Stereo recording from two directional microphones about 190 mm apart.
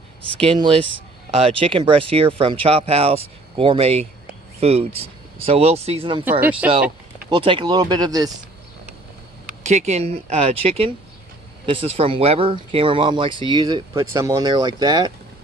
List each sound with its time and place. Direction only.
0.4 s speech: 30° right (ahead or behind)
6.6 s speech: 10° right (ahead or behind)
7.2 s speech: 25° right (ahead or behind)
9.6 s speech: 35° right (ahead or behind); by 15.1 s 20° right (ahead or behind)